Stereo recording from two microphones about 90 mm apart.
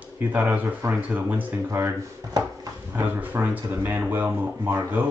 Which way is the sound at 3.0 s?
20° right (ahead or behind).